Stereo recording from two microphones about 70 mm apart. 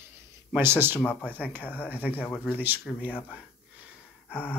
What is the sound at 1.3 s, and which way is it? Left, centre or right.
Speech, right.